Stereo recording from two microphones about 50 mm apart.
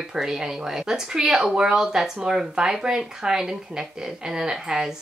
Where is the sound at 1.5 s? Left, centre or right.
Centre.